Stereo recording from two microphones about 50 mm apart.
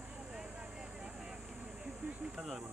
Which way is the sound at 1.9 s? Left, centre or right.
Right.